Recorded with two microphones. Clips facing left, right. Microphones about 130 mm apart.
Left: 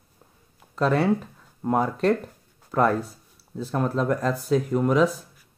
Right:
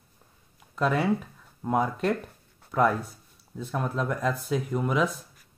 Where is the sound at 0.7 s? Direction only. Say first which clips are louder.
Left 3 dB; 5° right (ahead or behind).